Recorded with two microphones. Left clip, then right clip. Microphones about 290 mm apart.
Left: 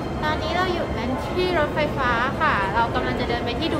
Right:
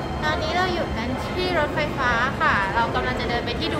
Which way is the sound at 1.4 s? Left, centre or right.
Centre.